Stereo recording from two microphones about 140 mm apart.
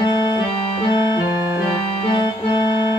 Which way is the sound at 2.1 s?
35° left (ahead or behind).